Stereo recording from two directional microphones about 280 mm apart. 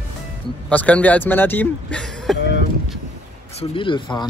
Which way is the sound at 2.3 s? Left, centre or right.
Left.